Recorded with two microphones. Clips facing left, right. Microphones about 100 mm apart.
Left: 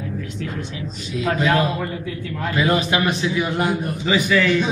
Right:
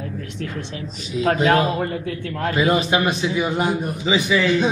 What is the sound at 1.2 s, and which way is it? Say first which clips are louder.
Speech: right 2 dB; 40° right (ahead or behind).